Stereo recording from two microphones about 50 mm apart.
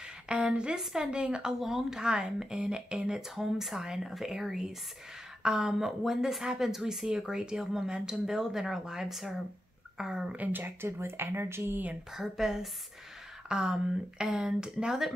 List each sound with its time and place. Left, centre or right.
0.3 s speech: right
1.6 s a woman's voice: centre
10.3 s speech: right
12.2 s a woman's voice: centre